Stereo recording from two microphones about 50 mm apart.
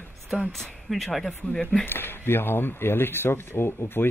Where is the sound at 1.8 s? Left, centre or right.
Left.